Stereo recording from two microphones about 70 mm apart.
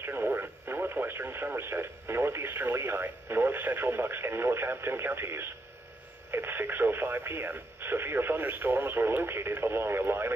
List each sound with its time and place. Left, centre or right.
0.0 s speech: right